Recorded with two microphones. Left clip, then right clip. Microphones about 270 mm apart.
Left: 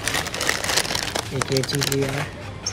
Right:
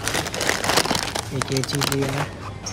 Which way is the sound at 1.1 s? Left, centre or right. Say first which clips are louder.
Left 2 dB; centre.